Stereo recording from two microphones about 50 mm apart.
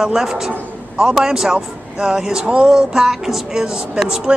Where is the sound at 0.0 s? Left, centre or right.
Centre.